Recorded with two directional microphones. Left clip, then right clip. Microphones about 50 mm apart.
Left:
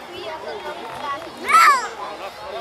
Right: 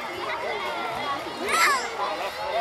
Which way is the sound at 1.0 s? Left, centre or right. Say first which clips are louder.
Left 1 dB; left.